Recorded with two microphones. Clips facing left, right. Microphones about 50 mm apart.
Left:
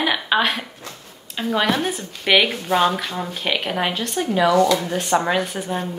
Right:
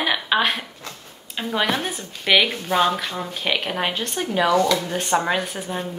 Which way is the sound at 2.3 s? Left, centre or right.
Centre.